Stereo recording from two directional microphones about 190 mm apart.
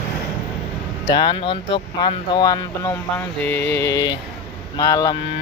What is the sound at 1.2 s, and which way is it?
Speech, 25° left (ahead or behind).